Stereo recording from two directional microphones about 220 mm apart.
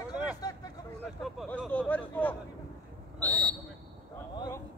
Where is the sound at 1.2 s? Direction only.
Centre (ahead or behind).